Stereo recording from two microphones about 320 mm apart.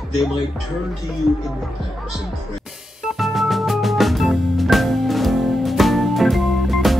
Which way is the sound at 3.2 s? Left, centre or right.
Centre.